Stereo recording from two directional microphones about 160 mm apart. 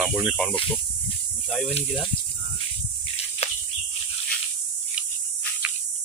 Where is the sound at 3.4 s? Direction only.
40° left (ahead or behind).